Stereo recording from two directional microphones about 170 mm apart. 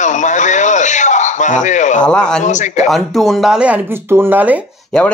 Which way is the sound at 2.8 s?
Centre (ahead or behind).